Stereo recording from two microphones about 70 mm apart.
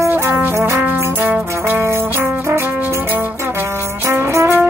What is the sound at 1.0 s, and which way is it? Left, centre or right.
Music, right.